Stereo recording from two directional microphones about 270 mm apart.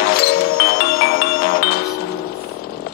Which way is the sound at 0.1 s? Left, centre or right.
Left.